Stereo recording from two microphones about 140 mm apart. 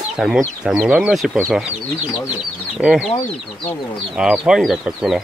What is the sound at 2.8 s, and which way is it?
Speech, 5° right (ahead or behind).